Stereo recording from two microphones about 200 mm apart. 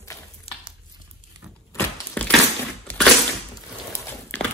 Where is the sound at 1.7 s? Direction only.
10° left (ahead or behind).